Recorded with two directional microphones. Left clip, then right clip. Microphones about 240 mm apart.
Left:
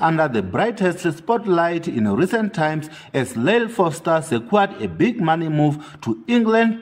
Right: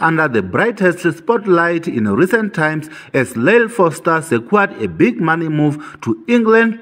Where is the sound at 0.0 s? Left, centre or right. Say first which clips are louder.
Right 4 dB; centre.